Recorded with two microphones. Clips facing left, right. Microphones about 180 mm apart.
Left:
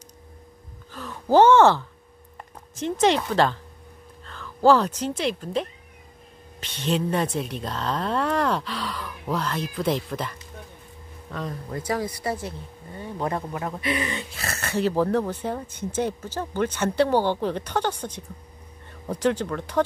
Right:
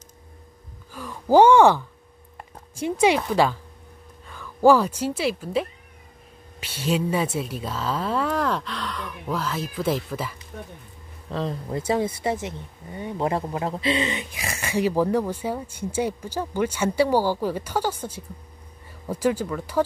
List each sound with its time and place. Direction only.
0.9 s gasp: 10° right (ahead or behind)
2.8 s a woman's voice: 10° right (ahead or behind)
11.2 s speech: 30° right (ahead or behind); by 19.8 s 5° right (ahead or behind)